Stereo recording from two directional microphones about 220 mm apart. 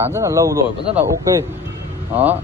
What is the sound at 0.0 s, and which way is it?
Speech, 15° right (ahead or behind).